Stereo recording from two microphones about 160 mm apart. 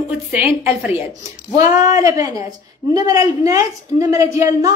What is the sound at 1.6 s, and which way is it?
Speech, 20° right (ahead or behind).